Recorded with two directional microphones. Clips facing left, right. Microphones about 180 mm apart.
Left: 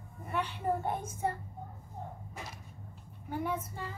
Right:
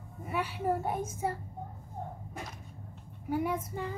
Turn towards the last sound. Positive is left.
turn(degrees=-15)  # may be behind; listen again after turning